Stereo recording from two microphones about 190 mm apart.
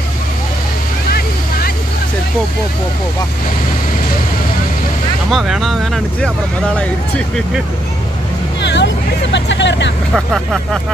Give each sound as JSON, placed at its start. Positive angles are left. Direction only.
{"t": 5.3, "sound": "speech", "side_deg": 0}
{"t": 8.5, "sound": "hubbub", "side_deg": 65}
{"t": 10.1, "sound": "speech", "side_deg": 0}